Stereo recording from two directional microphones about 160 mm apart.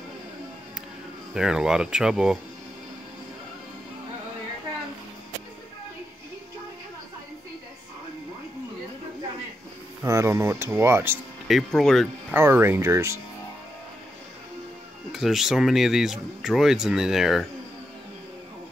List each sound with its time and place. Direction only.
1.3 s speech: 5° right (ahead or behind)
10.0 s speech: 15° right (ahead or behind)
11.4 s speech: centre (ahead or behind)
12.4 s speech: 15° right (ahead or behind)
15.1 s speech: centre (ahead or behind)